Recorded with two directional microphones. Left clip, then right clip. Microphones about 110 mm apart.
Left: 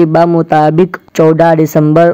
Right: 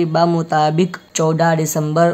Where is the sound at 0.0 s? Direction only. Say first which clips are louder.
Left 8 dB; 55° left (ahead or behind).